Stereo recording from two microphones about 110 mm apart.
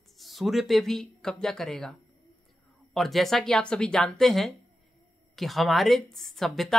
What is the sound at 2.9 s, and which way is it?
Speech, centre (ahead or behind).